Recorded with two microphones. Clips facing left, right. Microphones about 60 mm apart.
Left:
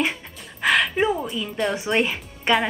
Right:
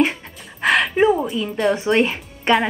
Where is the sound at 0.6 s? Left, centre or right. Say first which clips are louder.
Right 2 dB; centre.